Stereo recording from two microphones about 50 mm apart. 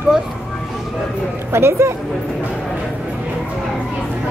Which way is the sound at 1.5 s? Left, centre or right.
Right.